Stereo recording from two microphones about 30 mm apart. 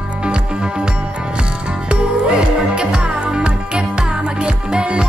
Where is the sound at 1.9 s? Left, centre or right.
Right.